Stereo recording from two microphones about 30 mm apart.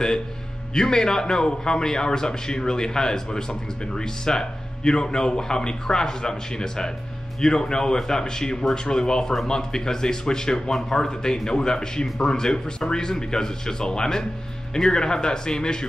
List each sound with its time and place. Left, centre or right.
0.7 s a man's voice: left